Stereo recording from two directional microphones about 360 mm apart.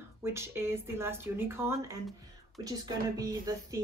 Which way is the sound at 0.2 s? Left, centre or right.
Centre.